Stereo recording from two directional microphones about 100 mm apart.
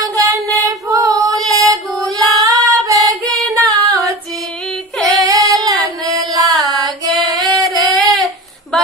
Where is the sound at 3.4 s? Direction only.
35° right (ahead or behind).